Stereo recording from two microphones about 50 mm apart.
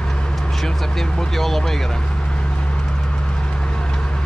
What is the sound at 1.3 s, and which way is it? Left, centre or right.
Vehicle, centre.